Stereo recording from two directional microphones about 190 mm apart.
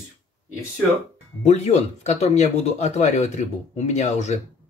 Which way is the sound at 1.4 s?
35° left (ahead or behind).